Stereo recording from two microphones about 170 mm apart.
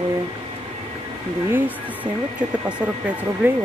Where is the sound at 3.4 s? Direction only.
10° right (ahead or behind).